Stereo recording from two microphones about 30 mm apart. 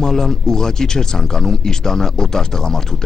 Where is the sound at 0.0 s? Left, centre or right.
Centre.